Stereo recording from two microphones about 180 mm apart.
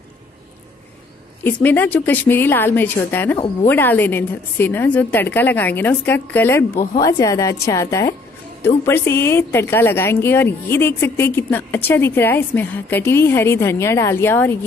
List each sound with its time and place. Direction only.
1.4 s a woman's voice: 10° left (ahead or behind)